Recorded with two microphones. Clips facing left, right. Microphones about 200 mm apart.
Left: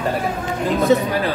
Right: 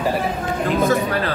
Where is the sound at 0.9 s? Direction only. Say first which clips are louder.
Left 3 dB; 15° left (ahead or behind).